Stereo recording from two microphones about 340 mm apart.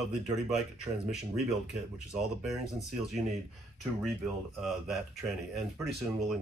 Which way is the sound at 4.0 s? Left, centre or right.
Centre.